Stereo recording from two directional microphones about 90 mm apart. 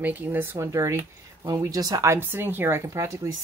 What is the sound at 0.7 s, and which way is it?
Speech, 35° right (ahead or behind).